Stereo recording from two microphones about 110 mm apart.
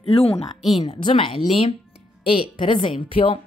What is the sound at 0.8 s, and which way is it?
A woman's voice, 45° left (ahead or behind).